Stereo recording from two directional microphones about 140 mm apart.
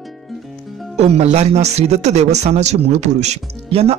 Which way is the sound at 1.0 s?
50° right (ahead or behind).